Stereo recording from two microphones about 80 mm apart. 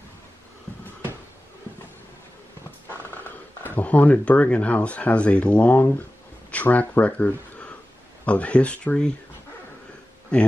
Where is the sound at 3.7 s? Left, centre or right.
Left.